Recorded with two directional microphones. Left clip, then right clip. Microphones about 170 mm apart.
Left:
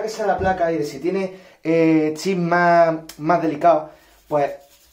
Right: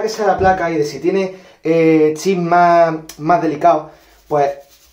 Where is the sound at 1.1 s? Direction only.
25° left (ahead or behind).